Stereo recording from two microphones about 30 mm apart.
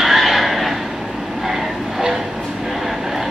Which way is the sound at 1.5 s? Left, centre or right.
Centre.